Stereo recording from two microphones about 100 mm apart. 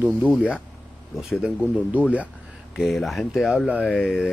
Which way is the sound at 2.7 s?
Centre (ahead or behind).